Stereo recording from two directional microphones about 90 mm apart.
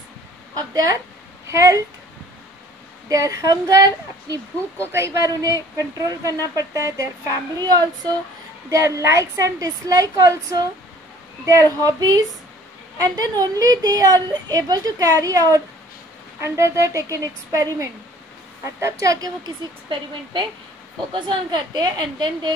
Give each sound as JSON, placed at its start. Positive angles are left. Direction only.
{"t": 0.6, "sound": "a woman's voice", "side_deg": -45}
{"t": 3.1, "sound": "a woman's voice", "side_deg": -35}
{"t": 8.6, "sound": "a woman's voice", "side_deg": -35}
{"t": 13.4, "sound": "a woman's voice", "side_deg": -45}
{"t": 19.4, "sound": "a woman's voice", "side_deg": -65}